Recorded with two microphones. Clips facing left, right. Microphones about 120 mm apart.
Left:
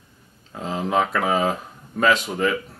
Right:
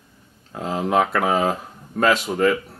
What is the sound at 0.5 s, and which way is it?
Speech, 5° right (ahead or behind).